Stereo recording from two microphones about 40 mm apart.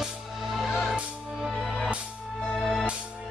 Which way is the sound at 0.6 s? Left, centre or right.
Centre.